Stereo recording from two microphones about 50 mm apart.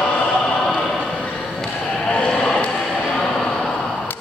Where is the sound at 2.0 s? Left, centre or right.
Left.